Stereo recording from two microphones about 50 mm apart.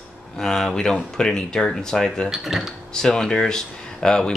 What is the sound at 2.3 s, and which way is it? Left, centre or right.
Speech, centre.